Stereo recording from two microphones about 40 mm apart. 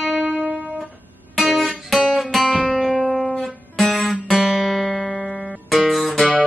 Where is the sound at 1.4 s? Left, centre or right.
Centre.